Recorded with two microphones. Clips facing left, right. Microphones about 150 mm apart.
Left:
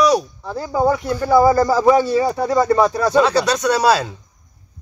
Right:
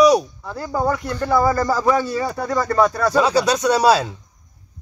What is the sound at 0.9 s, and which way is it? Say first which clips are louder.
Speech: left 3 dB; 10° left (ahead or behind).